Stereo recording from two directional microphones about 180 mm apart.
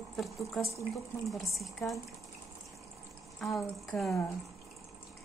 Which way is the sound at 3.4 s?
Centre (ahead or behind).